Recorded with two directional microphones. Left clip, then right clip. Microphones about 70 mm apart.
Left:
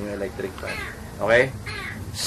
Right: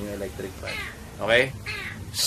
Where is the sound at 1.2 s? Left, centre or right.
Right.